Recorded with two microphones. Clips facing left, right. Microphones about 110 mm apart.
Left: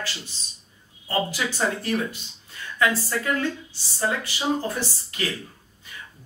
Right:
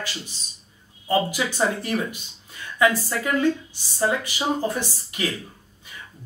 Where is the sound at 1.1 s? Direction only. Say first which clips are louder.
Right 3 dB; 15° right (ahead or behind).